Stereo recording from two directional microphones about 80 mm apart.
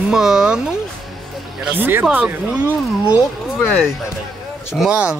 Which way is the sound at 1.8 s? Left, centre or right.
Right.